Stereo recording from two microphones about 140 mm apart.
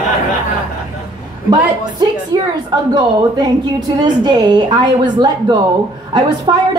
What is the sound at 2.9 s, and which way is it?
A woman's voice, 30° right (ahead or behind).